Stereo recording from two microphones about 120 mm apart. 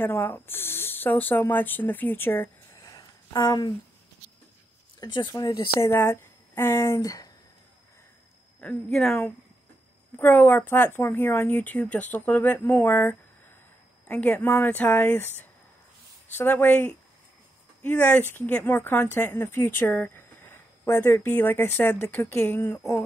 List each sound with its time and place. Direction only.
0.0 s speech: 15° left (ahead or behind); by 3.7 s 35° left (ahead or behind)
5.0 s speech: 35° left (ahead or behind)
8.5 s speech: 5° left (ahead or behind)
10.1 s speech: 15° left (ahead or behind)